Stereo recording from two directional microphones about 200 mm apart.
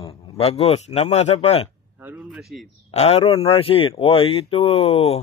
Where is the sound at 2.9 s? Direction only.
30° left (ahead or behind).